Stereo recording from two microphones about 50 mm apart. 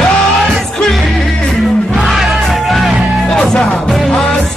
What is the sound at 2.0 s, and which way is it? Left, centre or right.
Music, centre.